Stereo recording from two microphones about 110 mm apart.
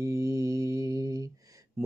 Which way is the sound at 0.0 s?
25° right (ahead or behind).